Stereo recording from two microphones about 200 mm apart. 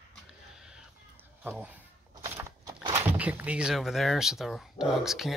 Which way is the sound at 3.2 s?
5° right (ahead or behind).